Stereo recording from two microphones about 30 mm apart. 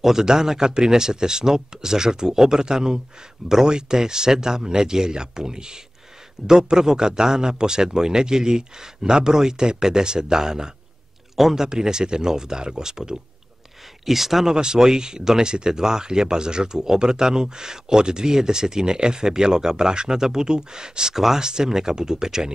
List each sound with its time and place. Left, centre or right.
0.0 s speech: centre
14.0 s speech: centre
14.5 s speech: right
21.1 s speech: centre
21.4 s speech: right